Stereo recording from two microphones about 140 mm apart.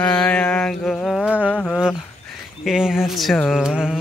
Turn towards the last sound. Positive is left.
turn(degrees=-5)  # may be behind; listen again after turning